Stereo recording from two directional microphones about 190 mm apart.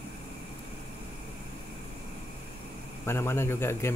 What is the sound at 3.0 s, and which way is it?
Speech, 15° left (ahead or behind).